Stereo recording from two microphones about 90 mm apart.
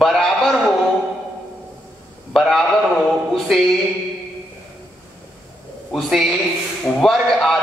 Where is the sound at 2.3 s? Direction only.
Centre (ahead or behind).